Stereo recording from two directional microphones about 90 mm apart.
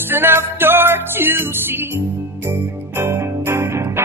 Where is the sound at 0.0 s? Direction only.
25° right (ahead or behind).